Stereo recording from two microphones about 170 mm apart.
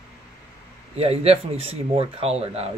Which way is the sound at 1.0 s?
35° right (ahead or behind).